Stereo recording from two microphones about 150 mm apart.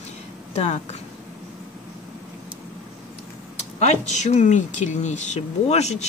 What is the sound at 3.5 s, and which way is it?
Speech, 50° left (ahead or behind).